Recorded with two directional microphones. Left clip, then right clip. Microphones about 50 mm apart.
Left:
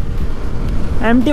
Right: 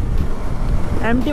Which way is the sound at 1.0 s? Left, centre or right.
Left.